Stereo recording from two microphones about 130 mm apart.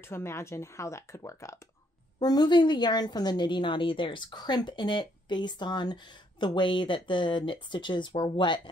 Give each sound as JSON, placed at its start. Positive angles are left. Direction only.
{"t": 0.1, "sound": "a woman's voice", "side_deg": 20}